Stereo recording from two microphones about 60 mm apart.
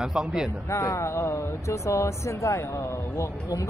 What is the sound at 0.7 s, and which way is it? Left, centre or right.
Speech, left.